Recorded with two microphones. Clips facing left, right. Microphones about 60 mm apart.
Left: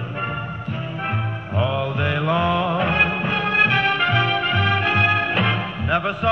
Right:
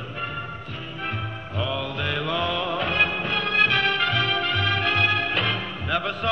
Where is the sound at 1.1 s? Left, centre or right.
Left.